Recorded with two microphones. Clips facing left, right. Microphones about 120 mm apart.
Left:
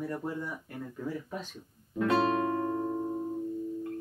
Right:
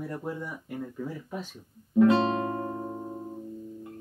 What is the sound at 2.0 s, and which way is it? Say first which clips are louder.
Music: right 4 dB; 30° right (ahead or behind).